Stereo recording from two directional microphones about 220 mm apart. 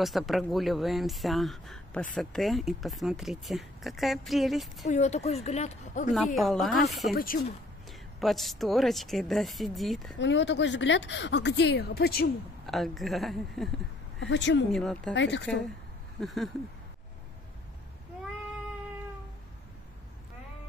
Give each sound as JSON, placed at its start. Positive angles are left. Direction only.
{"t": 0.0, "sound": "speech", "side_deg": 0}
{"t": 4.8, "sound": "speech", "side_deg": 30}
{"t": 6.1, "sound": "speech", "side_deg": 0}
{"t": 7.2, "sound": "speech", "side_deg": 40}
{"t": 8.2, "sound": "speech", "side_deg": 0}
{"t": 10.1, "sound": "speech", "side_deg": 55}
{"t": 12.6, "sound": "speech", "side_deg": 0}
{"t": 14.2, "sound": "a woman's voice", "side_deg": 55}
{"t": 14.7, "sound": "speech", "side_deg": 5}
{"t": 15.1, "sound": "a woman's voice", "side_deg": 55}
{"t": 16.2, "sound": "speech", "side_deg": 0}